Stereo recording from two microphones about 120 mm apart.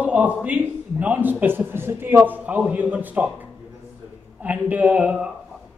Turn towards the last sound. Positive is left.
turn(degrees=-10)  # may be behind; listen again after turning